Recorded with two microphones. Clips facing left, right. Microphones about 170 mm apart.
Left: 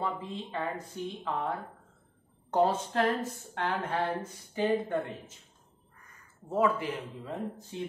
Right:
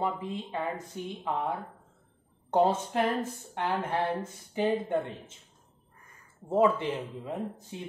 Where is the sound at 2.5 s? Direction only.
20° right (ahead or behind).